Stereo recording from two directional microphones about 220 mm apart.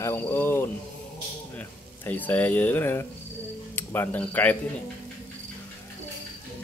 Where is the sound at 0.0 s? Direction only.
10° left (ahead or behind).